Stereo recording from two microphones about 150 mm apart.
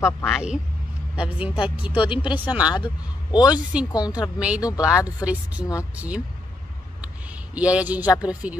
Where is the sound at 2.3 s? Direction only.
10° right (ahead or behind).